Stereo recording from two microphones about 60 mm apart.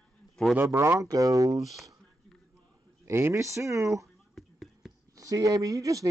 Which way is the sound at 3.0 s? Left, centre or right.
Right.